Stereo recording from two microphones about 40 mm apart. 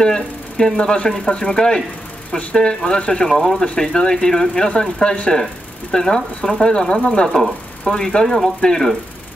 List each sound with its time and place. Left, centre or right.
0.0 s speech: centre
5.3 s speech: centre